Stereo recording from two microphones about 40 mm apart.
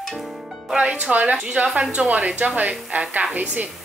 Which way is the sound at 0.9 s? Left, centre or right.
Right.